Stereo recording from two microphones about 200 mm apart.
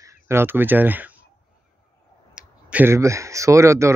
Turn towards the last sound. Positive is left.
turn(degrees=-15)  # may be behind; listen again after turning